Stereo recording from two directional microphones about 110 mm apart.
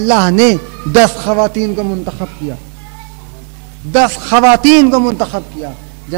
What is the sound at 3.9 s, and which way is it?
A man's voice, 10° right (ahead or behind).